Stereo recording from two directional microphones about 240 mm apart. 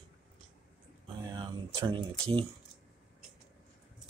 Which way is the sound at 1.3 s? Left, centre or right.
Right.